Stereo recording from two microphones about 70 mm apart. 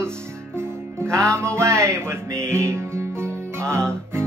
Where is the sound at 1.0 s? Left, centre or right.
Right.